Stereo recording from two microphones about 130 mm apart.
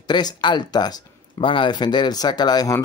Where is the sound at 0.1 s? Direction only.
35° left (ahead or behind).